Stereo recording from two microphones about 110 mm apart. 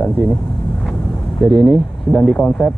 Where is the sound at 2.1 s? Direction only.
5° left (ahead or behind).